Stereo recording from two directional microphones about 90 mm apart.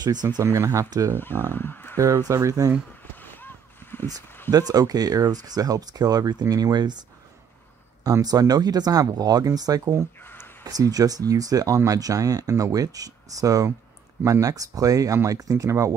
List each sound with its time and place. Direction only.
0.0 s speech: 50° right (ahead or behind)
0.4 s speech: 35° right (ahead or behind)
1.1 s speech: 25° left (ahead or behind)
2.0 s speech: 35° right (ahead or behind)
3.2 s a sound: 20° left (ahead or behind)
4.5 s speech: 45° right (ahead or behind)
8.0 s speech: 45° right (ahead or behind)
10.2 s a sound: 25° left (ahead or behind)
10.6 s speech: 45° right (ahead or behind)